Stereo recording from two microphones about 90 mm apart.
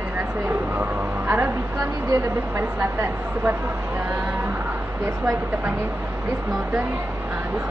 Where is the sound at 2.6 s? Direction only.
30° right (ahead or behind).